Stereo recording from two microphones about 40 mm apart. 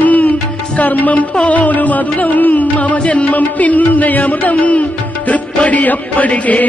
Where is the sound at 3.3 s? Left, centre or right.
Left.